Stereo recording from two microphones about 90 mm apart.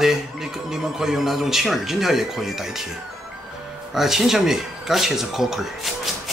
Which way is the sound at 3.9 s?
5° right (ahead or behind).